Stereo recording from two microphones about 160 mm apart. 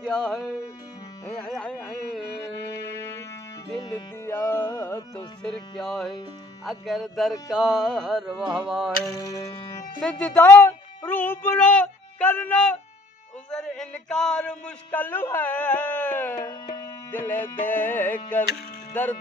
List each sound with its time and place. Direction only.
0.4 s a man's voice: 20° left (ahead or behind)
1.3 s carnatic music: 5° left (ahead or behind)
3.9 s a man's voice: 15° left (ahead or behind)
5.1 s music: 5° left (ahead or behind)
9.2 s music: 20° left (ahead or behind)
10.0 s a man's voice: 5° left (ahead or behind)
16.2 s tabla: 15° left (ahead or behind)
17.6 s a man's voice: 10° left (ahead or behind)